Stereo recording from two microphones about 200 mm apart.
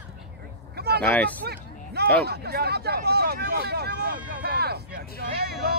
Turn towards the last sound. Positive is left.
turn(degrees=-50)  # may be behind; listen again after turning